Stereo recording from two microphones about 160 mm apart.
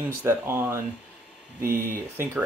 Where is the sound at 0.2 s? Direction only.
15° right (ahead or behind).